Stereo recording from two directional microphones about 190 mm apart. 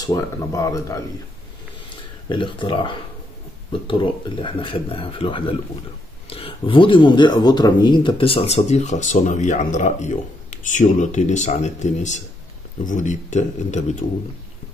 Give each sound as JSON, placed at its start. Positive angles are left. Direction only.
{"t": 0.0, "sound": "speech", "side_deg": 15}
{"t": 2.2, "sound": "speech", "side_deg": 25}